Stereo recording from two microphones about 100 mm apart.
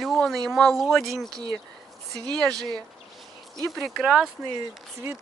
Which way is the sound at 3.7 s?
5° right (ahead or behind).